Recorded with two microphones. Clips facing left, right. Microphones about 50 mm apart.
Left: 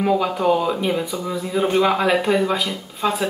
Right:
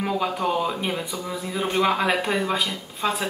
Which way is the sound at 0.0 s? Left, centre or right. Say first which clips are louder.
Left 6 dB; centre.